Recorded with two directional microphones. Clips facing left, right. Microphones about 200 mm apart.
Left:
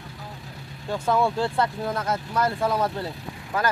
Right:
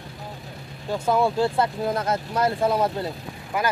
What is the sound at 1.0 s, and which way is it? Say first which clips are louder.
Speech: right 2 dB; 15° right (ahead or behind).